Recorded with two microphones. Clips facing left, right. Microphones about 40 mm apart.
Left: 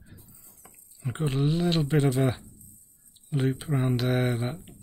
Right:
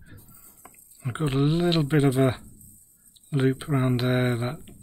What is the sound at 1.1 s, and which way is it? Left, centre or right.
Speech, right.